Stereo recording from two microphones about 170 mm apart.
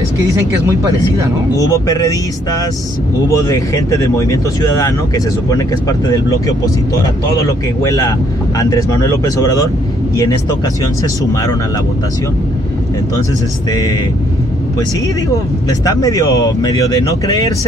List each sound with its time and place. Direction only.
0.3 s speech: 15° right (ahead or behind)
1.6 s speech: 20° left (ahead or behind)
13.7 s speech: 20° left (ahead or behind)
15.3 s speech: 20° left (ahead or behind)